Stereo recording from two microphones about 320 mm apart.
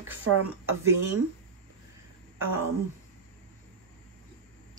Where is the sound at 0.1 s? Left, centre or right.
Right.